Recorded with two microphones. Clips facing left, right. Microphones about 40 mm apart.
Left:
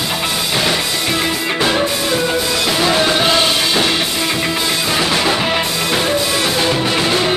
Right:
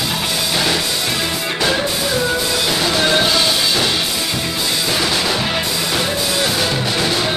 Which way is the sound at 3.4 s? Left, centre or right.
Left.